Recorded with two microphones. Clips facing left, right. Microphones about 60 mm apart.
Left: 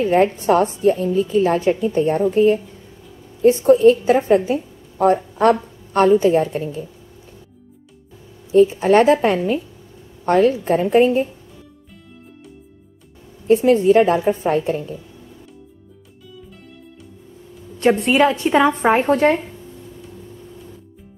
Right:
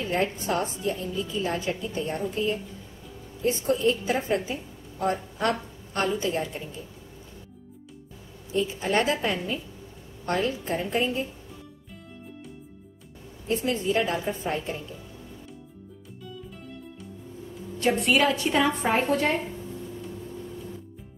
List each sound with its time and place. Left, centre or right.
0.0 s a woman's voice: left
8.5 s a woman's voice: left
10.5 s a woman's voice: left
13.5 s a woman's voice: left
13.8 s a woman's voice: left
17.7 s a woman's voice: left
19.0 s a woman's voice: left